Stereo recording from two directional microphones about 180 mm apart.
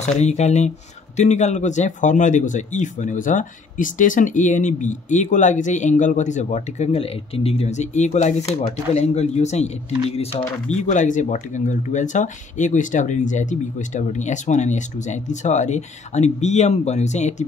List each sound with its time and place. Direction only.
0.0 s speech: 40° left (ahead or behind)